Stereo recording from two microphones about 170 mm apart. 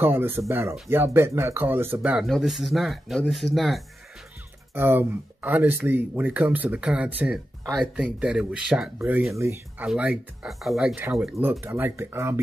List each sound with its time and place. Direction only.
0.0 s speech: 15° right (ahead or behind)
4.7 s speech: 15° right (ahead or behind)
9.4 s speech: 15° right (ahead or behind)